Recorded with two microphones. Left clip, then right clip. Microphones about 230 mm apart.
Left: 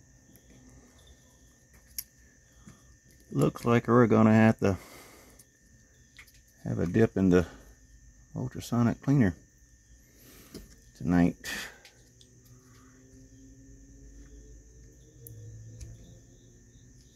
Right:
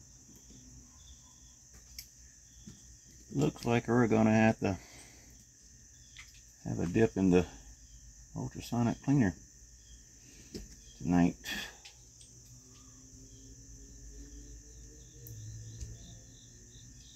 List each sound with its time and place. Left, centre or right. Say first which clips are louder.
3.3 s speech: left 5 dB; left
6.6 s speech: left 3 dB; left
11.1 s speech: left 3 dB; left